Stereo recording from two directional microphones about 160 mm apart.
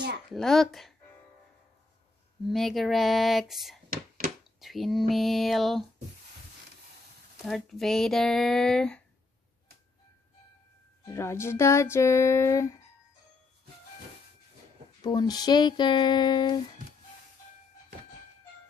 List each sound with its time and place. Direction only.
0.3 s speech: centre (ahead or behind)
2.4 s speech: centre (ahead or behind)
7.4 s speech: centre (ahead or behind)
11.1 s speech: 15° left (ahead or behind)
15.0 s a sound: 25° left (ahead or behind)